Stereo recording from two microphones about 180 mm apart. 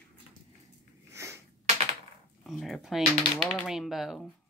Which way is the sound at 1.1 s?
15° right (ahead or behind).